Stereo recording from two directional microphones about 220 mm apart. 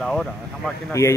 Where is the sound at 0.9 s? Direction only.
15° left (ahead or behind).